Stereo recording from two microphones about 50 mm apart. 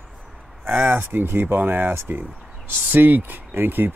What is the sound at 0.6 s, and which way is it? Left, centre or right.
Speech, right.